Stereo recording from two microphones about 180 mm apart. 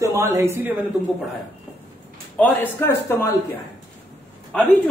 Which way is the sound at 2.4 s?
10° left (ahead or behind).